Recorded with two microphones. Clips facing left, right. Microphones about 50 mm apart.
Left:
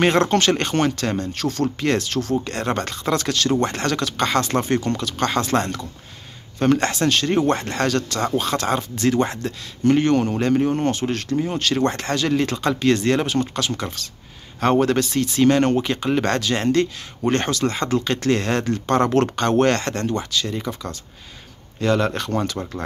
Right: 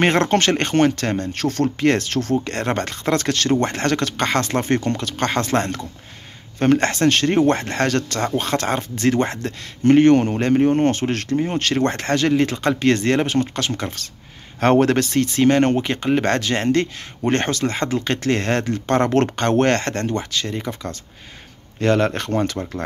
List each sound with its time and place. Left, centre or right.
0.0 s speech: right
10.9 s speech: right
14.6 s speech: right
15.3 s speech: right